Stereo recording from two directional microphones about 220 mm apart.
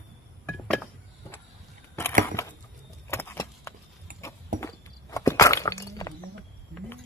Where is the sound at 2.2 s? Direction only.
15° left (ahead or behind).